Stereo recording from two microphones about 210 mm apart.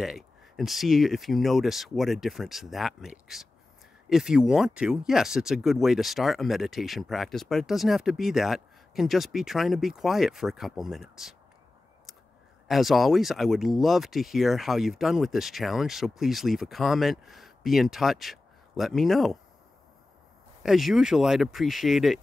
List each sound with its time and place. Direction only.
0.0 s speech: centre (ahead or behind)
12.6 s speech: centre (ahead or behind)
20.6 s speech: centre (ahead or behind)